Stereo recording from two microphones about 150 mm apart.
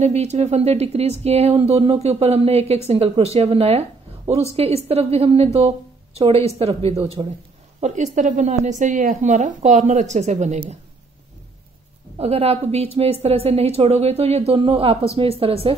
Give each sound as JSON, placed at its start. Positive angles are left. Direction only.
{"t": 0.0, "sound": "speech", "side_deg": -45}
{"t": 7.8, "sound": "speech", "side_deg": -50}
{"t": 12.2, "sound": "speech", "side_deg": -45}